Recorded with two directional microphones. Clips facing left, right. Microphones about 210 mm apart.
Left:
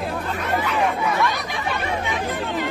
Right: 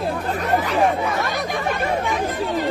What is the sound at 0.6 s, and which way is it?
Speech, 40° right (ahead or behind).